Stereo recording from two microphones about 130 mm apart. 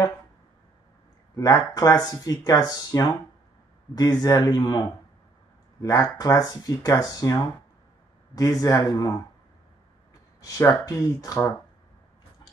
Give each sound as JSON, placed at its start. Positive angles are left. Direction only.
{"t": 1.3, "sound": "speech", "side_deg": 25}
{"t": 10.4, "sound": "speech", "side_deg": 25}